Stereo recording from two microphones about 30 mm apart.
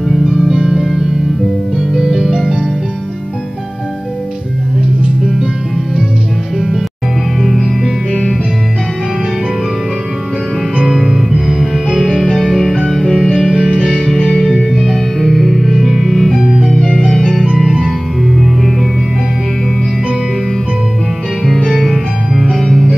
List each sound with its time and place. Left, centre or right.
0.2 s music: centre
1.8 s music: centre
11.0 s music: centre
12.2 s music: centre
14.0 s music: centre
16.4 s music: centre
17.1 s music: centre
21.6 s music: centre